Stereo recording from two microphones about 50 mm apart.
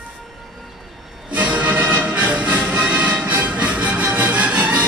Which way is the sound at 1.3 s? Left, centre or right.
Right.